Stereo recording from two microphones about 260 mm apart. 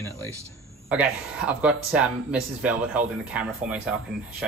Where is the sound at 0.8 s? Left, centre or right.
Centre.